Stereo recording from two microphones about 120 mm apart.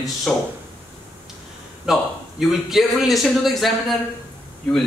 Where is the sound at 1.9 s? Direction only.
5° right (ahead or behind).